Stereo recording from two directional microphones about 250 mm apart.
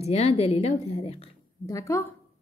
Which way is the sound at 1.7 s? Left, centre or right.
Centre.